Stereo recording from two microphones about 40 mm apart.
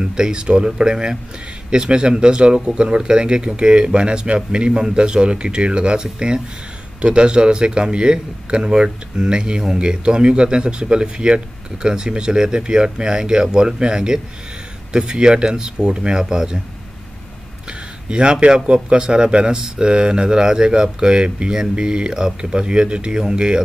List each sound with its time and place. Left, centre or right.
0.0 s a man's voice: right
18.1 s a man's voice: right